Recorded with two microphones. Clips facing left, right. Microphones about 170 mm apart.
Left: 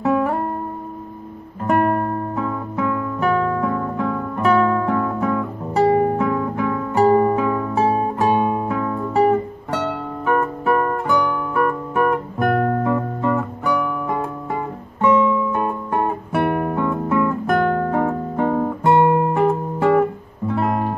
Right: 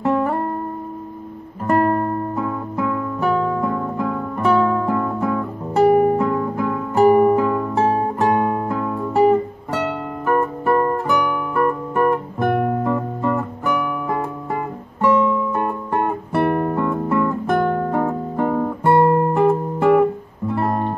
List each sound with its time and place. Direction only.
0.0 s music: 5° left (ahead or behind)
1.8 s music: 10° left (ahead or behind)
2.3 s guitar: 5° right (ahead or behind); by 8.6 s 15° left (ahead or behind)
8.6 s guitar: 5° right (ahead or behind)
11.1 s music: 10° right (ahead or behind)
11.5 s guitar: 5° left (ahead or behind)
12.5 s guitar: 15° right (ahead or behind)
12.8 s guitar: centre (ahead or behind)
18.9 s music: 5° left (ahead or behind)